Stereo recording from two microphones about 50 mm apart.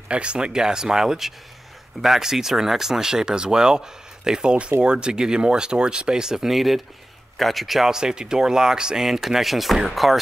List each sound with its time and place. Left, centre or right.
0.1 s speech: right; by 10.1 s centre